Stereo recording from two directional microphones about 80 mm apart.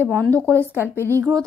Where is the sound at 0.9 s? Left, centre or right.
Left.